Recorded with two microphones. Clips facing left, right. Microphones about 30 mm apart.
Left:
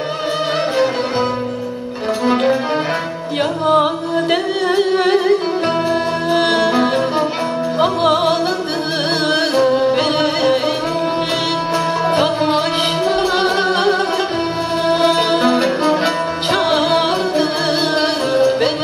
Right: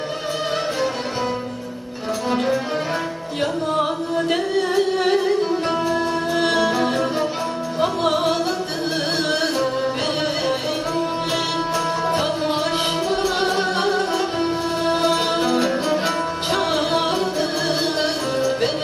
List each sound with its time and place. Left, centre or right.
2.2 s music: left
3.6 s music: left
6.3 s music: left
9.3 s music: left
12.2 s music: left